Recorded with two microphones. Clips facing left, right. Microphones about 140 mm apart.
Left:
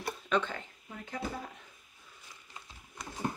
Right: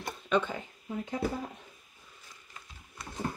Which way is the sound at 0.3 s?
10° right (ahead or behind).